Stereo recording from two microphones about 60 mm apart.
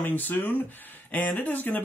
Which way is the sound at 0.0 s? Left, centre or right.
Left.